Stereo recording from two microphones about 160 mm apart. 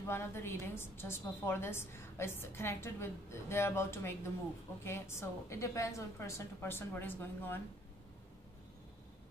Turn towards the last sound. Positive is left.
turn(degrees=10)  # may be behind; listen again after turning